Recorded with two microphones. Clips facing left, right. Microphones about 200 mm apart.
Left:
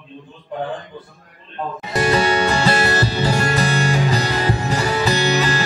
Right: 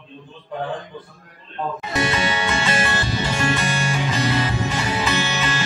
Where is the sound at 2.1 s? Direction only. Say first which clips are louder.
Left 6 dB; 35° left (ahead or behind).